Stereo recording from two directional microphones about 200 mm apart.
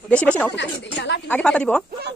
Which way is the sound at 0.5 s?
60° left (ahead or behind).